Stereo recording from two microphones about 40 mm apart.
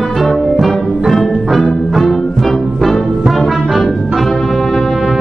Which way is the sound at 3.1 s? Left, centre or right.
Centre.